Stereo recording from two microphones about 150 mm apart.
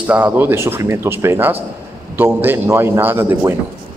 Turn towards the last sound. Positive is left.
turn(degrees=-15)  # may be behind; listen again after turning